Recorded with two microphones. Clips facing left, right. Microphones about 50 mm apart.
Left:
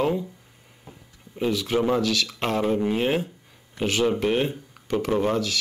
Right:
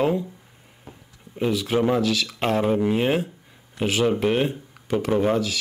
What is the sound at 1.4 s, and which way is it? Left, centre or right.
Speech, centre.